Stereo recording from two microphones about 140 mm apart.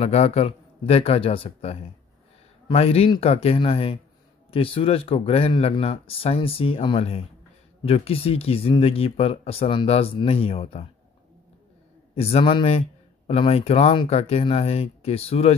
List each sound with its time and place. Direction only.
0.0 s speech: 50° left (ahead or behind)
12.2 s speech: 45° left (ahead or behind)